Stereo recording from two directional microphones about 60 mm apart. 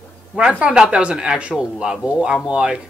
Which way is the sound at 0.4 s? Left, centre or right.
Centre.